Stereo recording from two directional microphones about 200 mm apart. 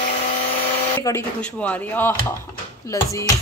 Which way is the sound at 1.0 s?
10° left (ahead or behind).